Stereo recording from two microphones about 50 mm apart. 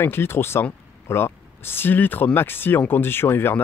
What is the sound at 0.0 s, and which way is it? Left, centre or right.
Speech, left.